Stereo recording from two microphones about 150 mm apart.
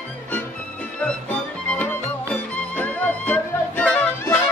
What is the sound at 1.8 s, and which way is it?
Music, 10° left (ahead or behind).